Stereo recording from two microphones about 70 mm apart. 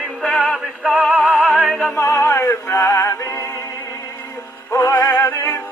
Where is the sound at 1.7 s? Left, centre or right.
Centre.